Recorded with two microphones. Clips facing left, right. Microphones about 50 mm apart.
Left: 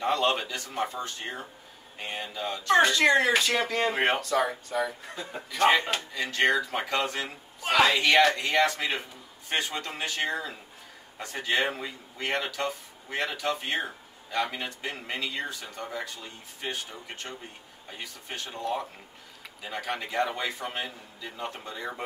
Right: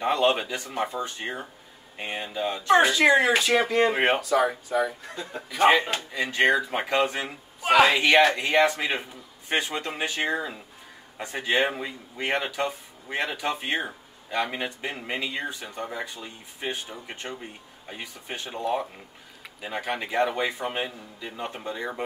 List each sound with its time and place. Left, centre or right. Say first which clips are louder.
0.0 s speech: right 3 dB; right
2.8 s speech: even; centre
5.1 s a man's voice: right 2 dB; centre
5.5 s speech: right 3 dB; centre